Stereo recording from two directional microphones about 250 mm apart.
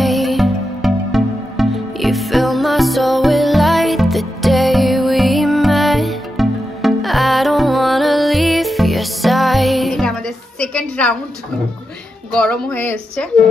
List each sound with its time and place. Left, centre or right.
0.0 s music: centre
12.4 s a woman's voice: centre